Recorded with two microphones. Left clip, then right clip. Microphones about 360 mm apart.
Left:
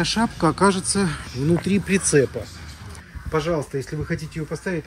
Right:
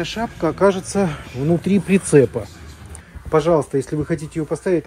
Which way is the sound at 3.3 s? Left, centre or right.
Centre.